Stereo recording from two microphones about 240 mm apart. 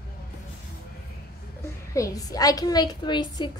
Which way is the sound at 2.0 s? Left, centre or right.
Centre.